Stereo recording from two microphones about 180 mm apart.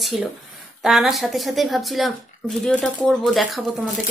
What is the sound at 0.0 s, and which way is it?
Speech, centre (ahead or behind).